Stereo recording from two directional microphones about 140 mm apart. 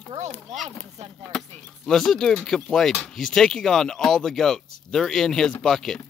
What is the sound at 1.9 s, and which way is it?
Speech, 5° left (ahead or behind).